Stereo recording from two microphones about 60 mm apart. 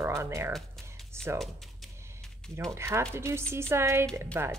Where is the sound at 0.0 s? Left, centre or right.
Right.